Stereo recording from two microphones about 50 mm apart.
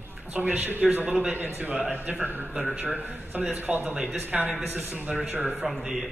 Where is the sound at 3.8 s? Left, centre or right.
Centre.